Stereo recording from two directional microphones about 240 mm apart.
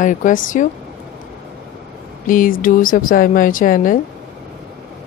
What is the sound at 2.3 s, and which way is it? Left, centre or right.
A woman's voice, left.